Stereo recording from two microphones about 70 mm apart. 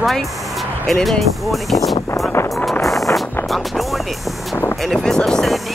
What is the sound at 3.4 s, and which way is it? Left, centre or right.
Speech, centre.